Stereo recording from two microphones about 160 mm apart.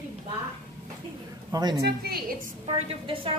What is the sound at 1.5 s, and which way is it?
Speech, 25° right (ahead or behind).